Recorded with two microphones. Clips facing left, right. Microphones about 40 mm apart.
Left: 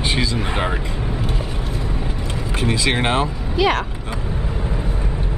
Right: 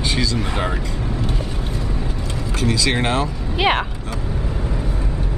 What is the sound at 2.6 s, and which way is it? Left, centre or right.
Speech, left.